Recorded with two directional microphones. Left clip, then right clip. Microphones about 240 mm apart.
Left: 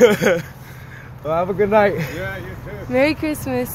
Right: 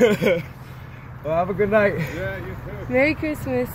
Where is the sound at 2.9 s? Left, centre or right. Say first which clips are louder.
Left 2 dB; centre.